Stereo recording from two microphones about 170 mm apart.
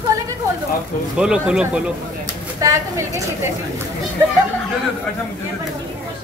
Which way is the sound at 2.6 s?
20° right (ahead or behind).